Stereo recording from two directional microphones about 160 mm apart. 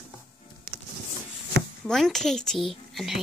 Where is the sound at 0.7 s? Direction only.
Centre (ahead or behind).